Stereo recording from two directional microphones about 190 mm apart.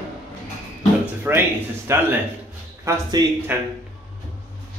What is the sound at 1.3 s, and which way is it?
Speech, 10° right (ahead or behind).